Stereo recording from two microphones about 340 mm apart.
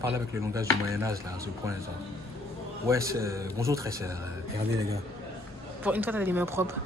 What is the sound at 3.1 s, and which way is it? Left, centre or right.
A man's voice, centre.